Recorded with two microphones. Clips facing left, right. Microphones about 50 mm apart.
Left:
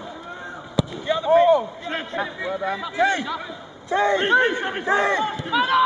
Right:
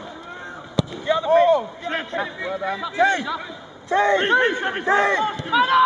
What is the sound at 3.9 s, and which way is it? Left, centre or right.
Speech, right.